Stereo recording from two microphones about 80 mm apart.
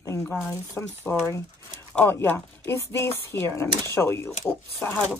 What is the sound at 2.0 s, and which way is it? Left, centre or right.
Mechanisms, left.